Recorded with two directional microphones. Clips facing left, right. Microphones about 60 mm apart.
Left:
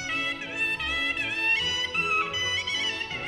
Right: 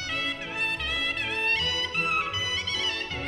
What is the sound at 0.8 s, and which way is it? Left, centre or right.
Music, centre.